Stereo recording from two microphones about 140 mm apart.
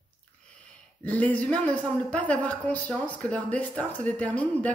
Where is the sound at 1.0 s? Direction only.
10° left (ahead or behind).